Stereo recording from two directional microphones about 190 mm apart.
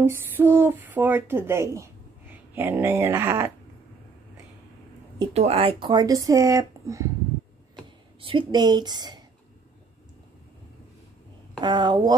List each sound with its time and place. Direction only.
0.0 s speech: 10° right (ahead or behind)
5.2 s speech: 30° right (ahead or behind); by 7.1 s 15° right (ahead or behind)
8.2 s speech: 25° right (ahead or behind)
11.6 s speech: 25° right (ahead or behind)